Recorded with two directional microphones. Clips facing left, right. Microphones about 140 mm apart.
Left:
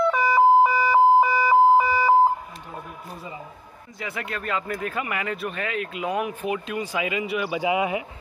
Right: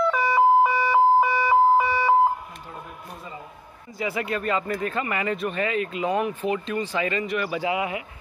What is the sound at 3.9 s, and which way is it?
Speech, centre (ahead or behind).